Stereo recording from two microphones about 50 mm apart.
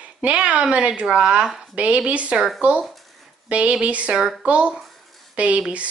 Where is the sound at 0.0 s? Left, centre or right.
Right.